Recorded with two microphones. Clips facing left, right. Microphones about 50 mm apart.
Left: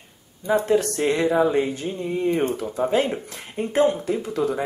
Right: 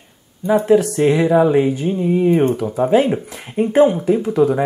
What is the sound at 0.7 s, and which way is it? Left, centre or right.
Speech, centre.